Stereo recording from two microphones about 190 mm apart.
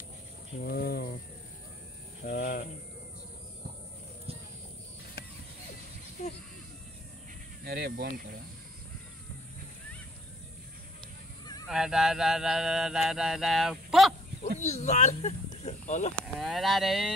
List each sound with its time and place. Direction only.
0.6 s speech: 50° left (ahead or behind)
2.2 s cricket: 50° left (ahead or behind)
7.6 s speech: 55° right (ahead or behind)
11.6 s a sound: centre (ahead or behind)
14.6 s speech: 35° left (ahead or behind)
16.3 s a sound: centre (ahead or behind)